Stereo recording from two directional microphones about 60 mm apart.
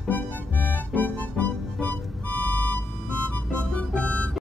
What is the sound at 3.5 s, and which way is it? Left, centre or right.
Music, centre.